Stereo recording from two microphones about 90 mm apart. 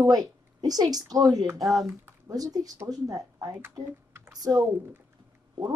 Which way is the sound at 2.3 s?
45° right (ahead or behind).